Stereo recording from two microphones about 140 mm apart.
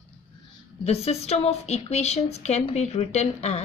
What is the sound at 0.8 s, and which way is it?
Speech, 50° left (ahead or behind).